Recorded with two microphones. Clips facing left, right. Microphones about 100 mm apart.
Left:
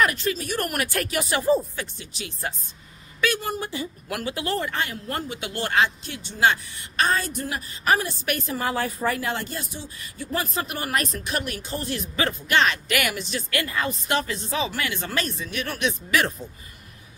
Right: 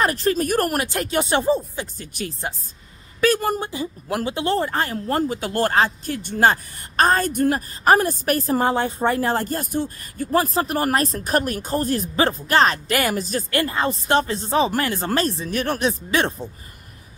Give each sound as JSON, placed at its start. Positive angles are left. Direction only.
{"t": 0.0, "sound": "speech", "side_deg": -40}
{"t": 0.7, "sound": "speech", "side_deg": -25}
{"t": 2.0, "sound": "speech", "side_deg": -45}
{"t": 3.6, "sound": "speech", "side_deg": -25}